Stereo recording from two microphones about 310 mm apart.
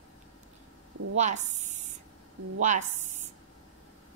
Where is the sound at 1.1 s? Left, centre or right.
Right.